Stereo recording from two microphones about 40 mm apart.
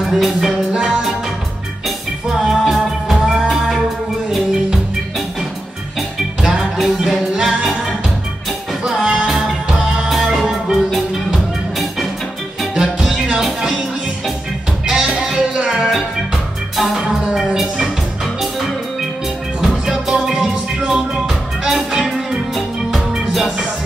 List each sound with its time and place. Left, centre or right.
0.1 s music: centre
2.4 s music: centre
6.4 s music: centre
9.0 s music: centre
10.4 s music: centre
13.4 s music: centre
14.9 s music: centre
19.6 s music: centre
21.6 s music: centre